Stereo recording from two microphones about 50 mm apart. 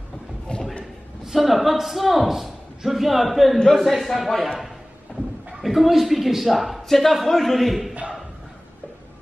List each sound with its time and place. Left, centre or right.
0.5 s a sound: centre
1.2 s a man's voice: centre
3.5 s a man's voice: centre
3.8 s a man's voice: centre
5.6 s a man's voice: centre